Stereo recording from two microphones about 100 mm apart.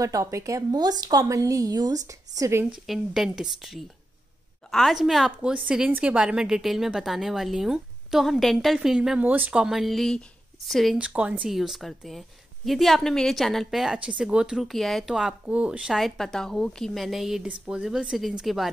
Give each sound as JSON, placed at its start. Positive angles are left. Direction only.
{"t": 0.0, "sound": "a woman's voice", "side_deg": -35}
{"t": 2.9, "sound": "a woman's voice", "side_deg": -5}
{"t": 5.5, "sound": "a woman's voice", "side_deg": -15}
{"t": 9.2, "sound": "a woman's voice", "side_deg": -15}
{"t": 11.0, "sound": "a woman's voice", "side_deg": -10}